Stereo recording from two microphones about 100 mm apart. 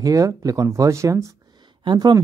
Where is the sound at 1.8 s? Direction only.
50° right (ahead or behind).